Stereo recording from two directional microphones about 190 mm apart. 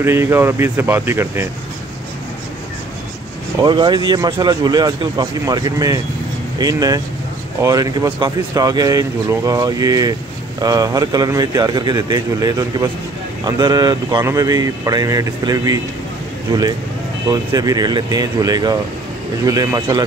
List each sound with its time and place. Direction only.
0.0 s speech: 15° right (ahead or behind)
3.6 s speech: 25° right (ahead or behind)
17.3 s speech: 20° right (ahead or behind)